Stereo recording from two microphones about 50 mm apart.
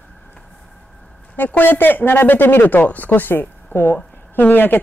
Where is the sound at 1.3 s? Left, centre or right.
Left.